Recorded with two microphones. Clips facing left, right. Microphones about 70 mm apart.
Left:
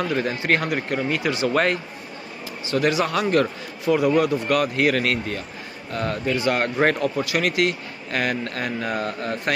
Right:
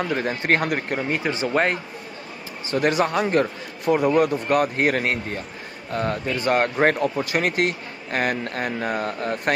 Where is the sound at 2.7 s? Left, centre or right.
Right.